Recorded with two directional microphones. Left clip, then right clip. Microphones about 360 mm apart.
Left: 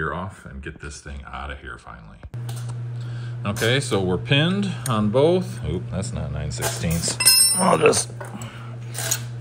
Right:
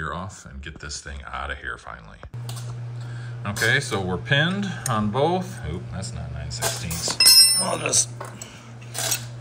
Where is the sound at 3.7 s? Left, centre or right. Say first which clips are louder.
Right 1 dB; centre.